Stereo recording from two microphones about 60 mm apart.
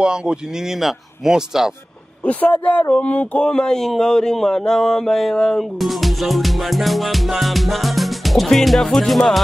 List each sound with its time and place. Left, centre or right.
0.0 s speech: centre
2.2 s speech: left
3.4 s speech: centre